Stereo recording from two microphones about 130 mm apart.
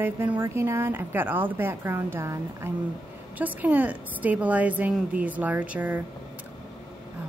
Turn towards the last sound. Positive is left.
turn(degrees=-10)  # may be behind; listen again after turning